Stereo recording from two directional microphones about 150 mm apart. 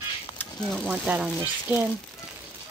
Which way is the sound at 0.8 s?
10° right (ahead or behind).